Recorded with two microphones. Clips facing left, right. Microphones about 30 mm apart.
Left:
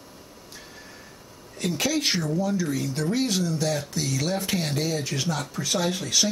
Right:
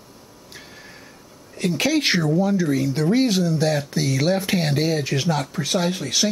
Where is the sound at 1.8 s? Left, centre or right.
Right.